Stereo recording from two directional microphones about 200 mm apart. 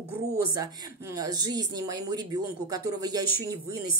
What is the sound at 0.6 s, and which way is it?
Speech, 20° right (ahead or behind).